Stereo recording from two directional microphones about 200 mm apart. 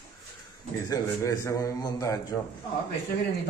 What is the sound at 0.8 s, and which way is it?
A man's voice, 15° left (ahead or behind).